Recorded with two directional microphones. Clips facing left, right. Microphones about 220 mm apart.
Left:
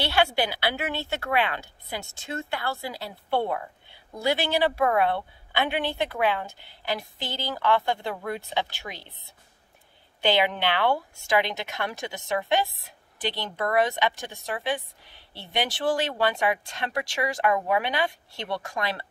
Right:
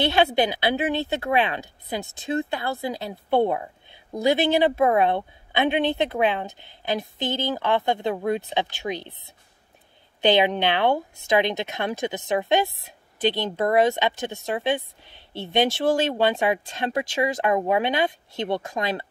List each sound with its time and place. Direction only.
0.0 s a woman's voice: 20° right (ahead or behind)